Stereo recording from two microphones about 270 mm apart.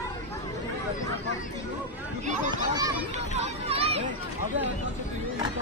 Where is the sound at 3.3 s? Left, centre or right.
Right.